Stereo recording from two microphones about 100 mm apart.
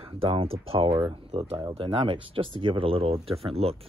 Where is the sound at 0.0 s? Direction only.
65° right (ahead or behind).